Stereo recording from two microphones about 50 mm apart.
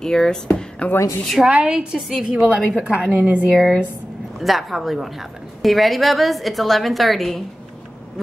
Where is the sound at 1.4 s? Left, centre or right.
Centre.